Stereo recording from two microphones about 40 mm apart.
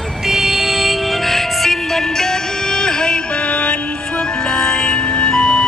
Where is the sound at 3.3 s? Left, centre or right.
Left.